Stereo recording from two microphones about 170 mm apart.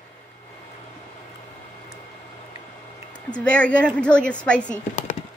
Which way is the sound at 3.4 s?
5° left (ahead or behind).